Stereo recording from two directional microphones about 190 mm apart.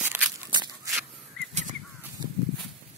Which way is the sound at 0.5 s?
25° right (ahead or behind).